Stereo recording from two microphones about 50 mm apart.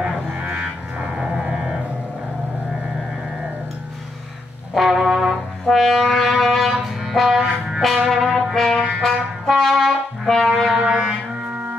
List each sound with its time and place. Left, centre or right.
0.0 s music: right
4.7 s music: centre
5.7 s music: centre
7.3 s music: centre
8.1 s brass instrument: centre
8.5 s trumpet: centre
10.8 s music: centre